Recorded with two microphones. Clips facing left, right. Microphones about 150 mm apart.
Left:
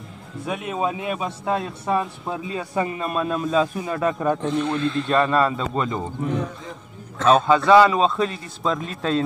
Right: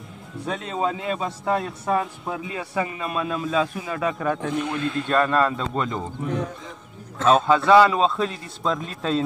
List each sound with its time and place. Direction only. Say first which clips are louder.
0.5 s a man's voice: left 1 dB; 15° left (ahead or behind)
2.7 s speech: left 2 dB; 40° left (ahead or behind)
4.2 s speech: left 3 dB; 20° left (ahead or behind)
4.6 s speech: left 3 dB; 15° right (ahead or behind)
5.1 s a man's voice: left 1 dB; 5° left (ahead or behind)
7.2 s a man's voice: left 1 dB; centre (ahead or behind)